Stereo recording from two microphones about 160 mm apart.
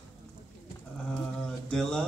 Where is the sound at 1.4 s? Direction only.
5° left (ahead or behind).